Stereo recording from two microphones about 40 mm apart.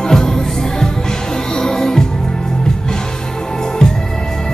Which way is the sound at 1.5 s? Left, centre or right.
Centre.